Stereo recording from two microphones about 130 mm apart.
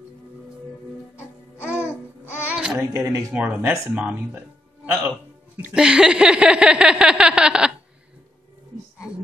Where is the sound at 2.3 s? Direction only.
10° right (ahead or behind).